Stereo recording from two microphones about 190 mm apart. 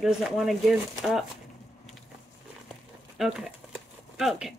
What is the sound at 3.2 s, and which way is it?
Speech, centre (ahead or behind).